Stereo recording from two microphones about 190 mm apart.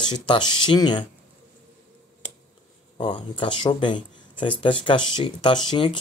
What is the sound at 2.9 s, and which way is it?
Speech, 25° left (ahead or behind).